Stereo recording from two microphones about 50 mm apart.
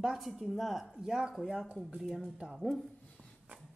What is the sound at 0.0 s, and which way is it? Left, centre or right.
Speech, centre.